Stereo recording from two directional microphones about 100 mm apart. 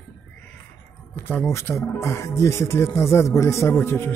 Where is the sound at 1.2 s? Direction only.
25° left (ahead or behind).